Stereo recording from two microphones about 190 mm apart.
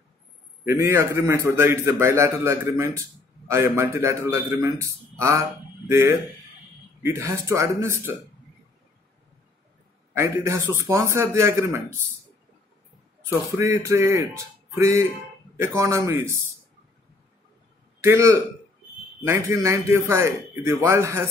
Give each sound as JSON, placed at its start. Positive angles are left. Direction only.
{"t": 0.7, "sound": "a man's voice", "side_deg": -15}
{"t": 10.1, "sound": "a man's voice", "side_deg": -15}
{"t": 13.3, "sound": "a man's voice", "side_deg": -15}
{"t": 18.0, "sound": "a man's voice", "side_deg": -15}